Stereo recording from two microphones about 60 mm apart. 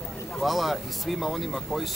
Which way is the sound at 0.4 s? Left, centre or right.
Centre.